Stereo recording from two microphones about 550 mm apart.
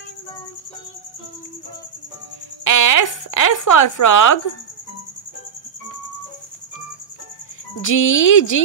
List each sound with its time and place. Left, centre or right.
2.6 s speech: left
7.8 s speech: left